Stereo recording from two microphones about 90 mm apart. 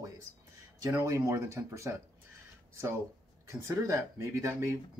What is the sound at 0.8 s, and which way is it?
Speech, 35° right (ahead or behind).